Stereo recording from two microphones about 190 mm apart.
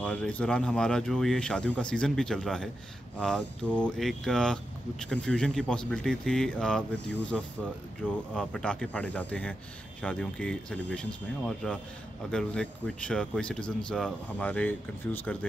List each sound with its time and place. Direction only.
0.0 s speech: 5° left (ahead or behind)